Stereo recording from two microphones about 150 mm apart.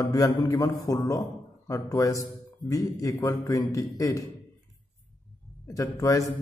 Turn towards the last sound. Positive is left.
turn(degrees=20)  # may be behind; listen again after turning